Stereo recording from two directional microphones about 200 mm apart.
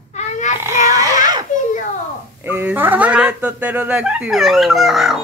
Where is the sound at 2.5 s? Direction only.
10° right (ahead or behind).